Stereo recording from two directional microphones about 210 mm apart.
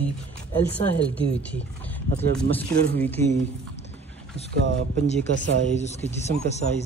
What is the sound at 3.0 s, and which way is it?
Speech, 10° left (ahead or behind).